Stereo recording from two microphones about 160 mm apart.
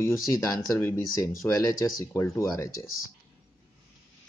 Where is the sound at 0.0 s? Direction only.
20° left (ahead or behind).